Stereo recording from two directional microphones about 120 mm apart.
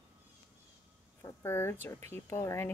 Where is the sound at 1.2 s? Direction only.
25° left (ahead or behind).